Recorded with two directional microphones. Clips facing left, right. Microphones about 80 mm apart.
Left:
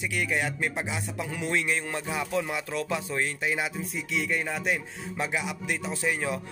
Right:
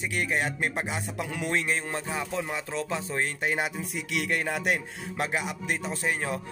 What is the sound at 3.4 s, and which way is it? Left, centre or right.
Speech, right.